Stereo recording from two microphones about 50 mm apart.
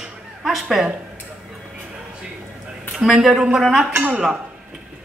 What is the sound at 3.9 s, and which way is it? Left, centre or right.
Speech, right.